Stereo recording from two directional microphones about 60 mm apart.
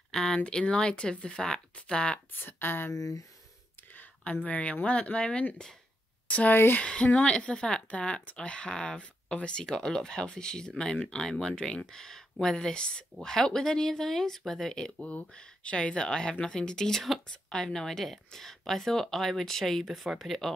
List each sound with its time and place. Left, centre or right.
0.1 s a sound: centre
0.4 s speech: centre
2.3 s speech: left
2.9 s speech: left
4.5 s speech: left
6.5 s speech: left
6.8 s a woman's voice: centre